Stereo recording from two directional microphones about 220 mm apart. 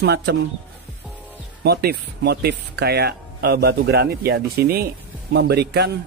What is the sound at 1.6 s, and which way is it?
Speech, 45° right (ahead or behind).